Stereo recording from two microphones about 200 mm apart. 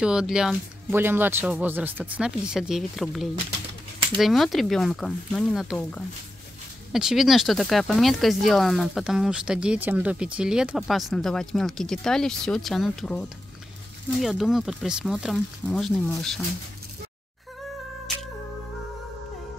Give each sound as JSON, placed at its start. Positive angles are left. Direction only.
{"t": 0.0, "sound": "speech", "side_deg": -5}